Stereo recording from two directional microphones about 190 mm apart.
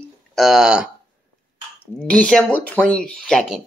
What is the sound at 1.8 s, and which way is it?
Speech, 5° left (ahead or behind).